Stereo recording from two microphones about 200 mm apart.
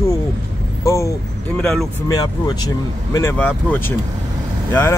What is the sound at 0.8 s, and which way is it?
Vehicle, 15° left (ahead or behind).